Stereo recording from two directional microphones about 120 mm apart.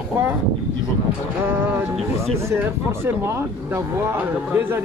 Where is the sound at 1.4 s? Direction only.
20° right (ahead or behind).